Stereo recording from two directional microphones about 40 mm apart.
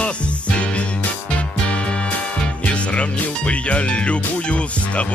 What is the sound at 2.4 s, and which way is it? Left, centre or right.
Speech, left.